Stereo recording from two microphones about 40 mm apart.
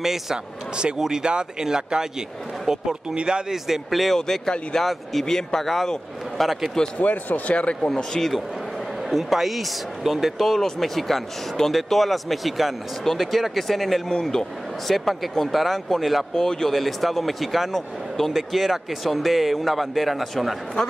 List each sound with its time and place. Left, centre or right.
0.0 s speech: centre
1.2 s speech: right
3.5 s speech: centre
4.2 s a man's voice: centre
7.0 s speech: left
7.5 s speech: left
7.9 s speech: centre
9.1 s speech: centre
16.3 s speech: centre
16.7 s speech: centre